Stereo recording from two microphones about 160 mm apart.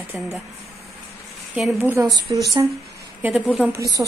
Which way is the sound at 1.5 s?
Centre (ahead or behind).